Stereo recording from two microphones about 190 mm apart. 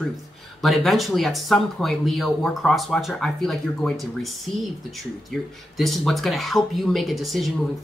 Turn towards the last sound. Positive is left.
turn(degrees=0)  # may be behind; listen again after turning